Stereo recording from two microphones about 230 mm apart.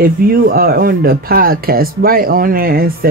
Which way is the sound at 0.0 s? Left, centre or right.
Right.